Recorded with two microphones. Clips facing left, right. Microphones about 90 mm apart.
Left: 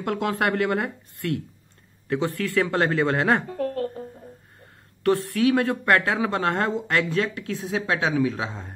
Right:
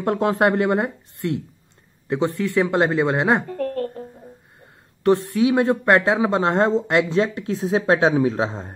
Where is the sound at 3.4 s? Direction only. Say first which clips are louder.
Right 2 dB; 5° left (ahead or behind).